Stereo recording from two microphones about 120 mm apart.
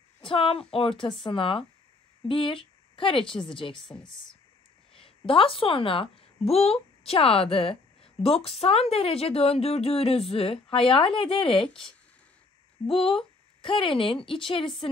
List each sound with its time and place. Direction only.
0.2 s a woman's voice: 50° left (ahead or behind)
3.9 s speech: 5° left (ahead or behind)
4.9 s a woman's voice: 50° left (ahead or behind)
12.8 s speech: 50° left (ahead or behind)